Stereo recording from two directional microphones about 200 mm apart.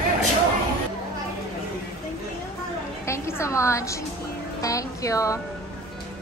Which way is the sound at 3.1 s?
15° left (ahead or behind).